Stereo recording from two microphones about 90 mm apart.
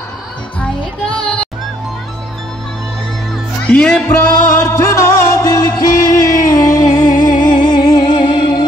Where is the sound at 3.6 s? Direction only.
10° left (ahead or behind).